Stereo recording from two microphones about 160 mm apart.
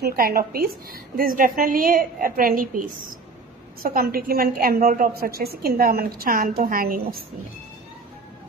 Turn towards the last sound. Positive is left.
turn(degrees=-65)  # may be behind; listen again after turning